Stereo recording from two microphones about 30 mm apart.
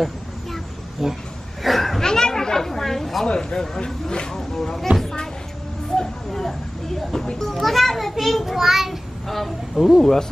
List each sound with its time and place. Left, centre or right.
1.0 s a child's voice: centre
1.6 s a sound: centre
2.0 s chatter: left
3.3 s speech: left
4.9 s speech: right
6.3 s a child's voice: centre
9.3 s a child's voice: centre
10.0 s speech: centre